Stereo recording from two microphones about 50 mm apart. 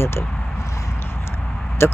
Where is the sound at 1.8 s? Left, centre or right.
Left.